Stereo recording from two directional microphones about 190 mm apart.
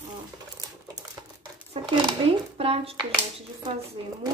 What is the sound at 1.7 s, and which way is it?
Speech, 30° right (ahead or behind).